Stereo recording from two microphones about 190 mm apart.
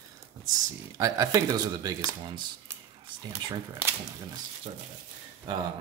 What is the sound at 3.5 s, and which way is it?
Speech, 20° right (ahead or behind).